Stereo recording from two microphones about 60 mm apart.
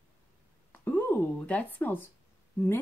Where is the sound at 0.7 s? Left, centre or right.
Left.